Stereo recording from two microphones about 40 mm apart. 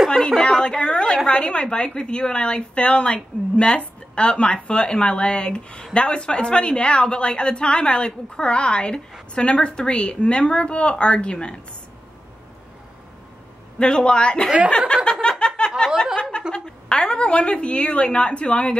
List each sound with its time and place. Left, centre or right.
0.4 s a sound: left
1.2 s a woman's voice: left
13.7 s a woman's voice: left
15.2 s snicker: left
16.2 s a woman's voice: left